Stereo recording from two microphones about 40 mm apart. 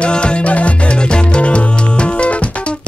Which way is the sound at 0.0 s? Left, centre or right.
Left.